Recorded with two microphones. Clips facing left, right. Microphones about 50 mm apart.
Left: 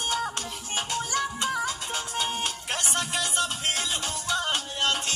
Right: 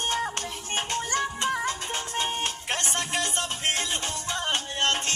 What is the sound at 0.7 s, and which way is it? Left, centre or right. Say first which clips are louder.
Music: right 1 dB; right.